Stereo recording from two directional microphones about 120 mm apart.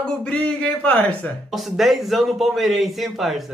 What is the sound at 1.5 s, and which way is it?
A man's voice, centre (ahead or behind).